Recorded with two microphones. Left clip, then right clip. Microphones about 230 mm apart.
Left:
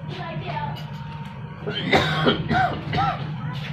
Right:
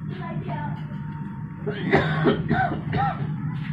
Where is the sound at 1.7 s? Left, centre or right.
Centre.